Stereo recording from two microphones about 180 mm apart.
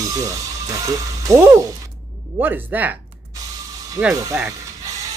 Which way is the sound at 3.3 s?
20° right (ahead or behind).